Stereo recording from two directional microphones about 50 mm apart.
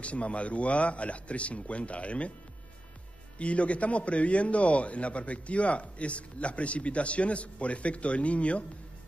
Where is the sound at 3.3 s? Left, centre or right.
Left.